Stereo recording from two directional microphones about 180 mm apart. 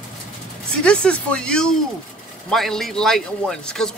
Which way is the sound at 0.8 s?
5° left (ahead or behind).